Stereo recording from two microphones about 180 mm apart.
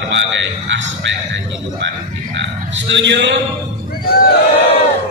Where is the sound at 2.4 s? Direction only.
85° right.